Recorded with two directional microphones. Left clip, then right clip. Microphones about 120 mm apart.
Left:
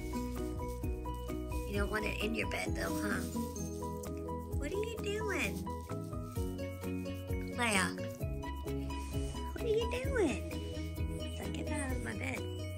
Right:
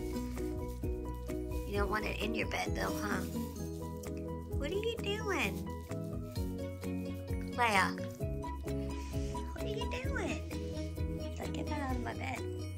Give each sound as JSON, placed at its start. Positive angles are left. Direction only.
{"t": 1.7, "sound": "speech", "side_deg": -25}
{"t": 4.7, "sound": "music", "side_deg": -20}
{"t": 7.5, "sound": "speech", "side_deg": -10}
{"t": 9.7, "sound": "music", "side_deg": 0}
{"t": 11.5, "sound": "music", "side_deg": -5}